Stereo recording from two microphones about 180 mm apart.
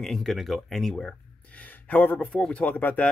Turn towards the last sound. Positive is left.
turn(degrees=10)  # may be behind; listen again after turning